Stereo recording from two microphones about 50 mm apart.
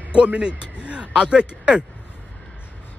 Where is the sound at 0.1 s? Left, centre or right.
Right.